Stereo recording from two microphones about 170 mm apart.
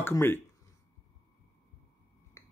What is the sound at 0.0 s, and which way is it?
Speech, 15° left (ahead or behind).